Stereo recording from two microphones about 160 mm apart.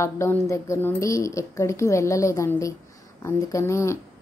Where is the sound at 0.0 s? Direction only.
15° left (ahead or behind).